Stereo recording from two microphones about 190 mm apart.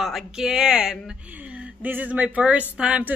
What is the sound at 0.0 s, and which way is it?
Speech, centre (ahead or behind).